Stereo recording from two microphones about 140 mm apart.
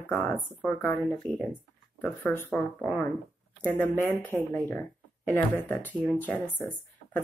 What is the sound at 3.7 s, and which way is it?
Speech, 15° left (ahead or behind).